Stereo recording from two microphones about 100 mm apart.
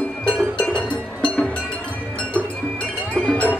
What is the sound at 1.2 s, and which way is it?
Music, 10° left (ahead or behind).